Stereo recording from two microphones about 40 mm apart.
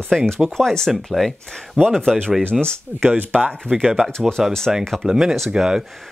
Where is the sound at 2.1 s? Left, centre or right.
Centre.